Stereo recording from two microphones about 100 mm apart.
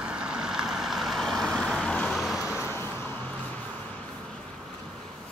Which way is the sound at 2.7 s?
25° left (ahead or behind).